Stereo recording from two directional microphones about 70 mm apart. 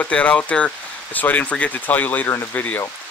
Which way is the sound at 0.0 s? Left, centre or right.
Centre.